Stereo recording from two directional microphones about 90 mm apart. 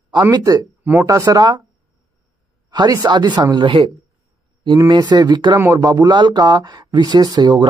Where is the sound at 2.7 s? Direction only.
55° right (ahead or behind).